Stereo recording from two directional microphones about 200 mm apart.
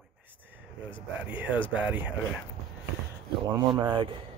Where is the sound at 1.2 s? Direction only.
10° right (ahead or behind).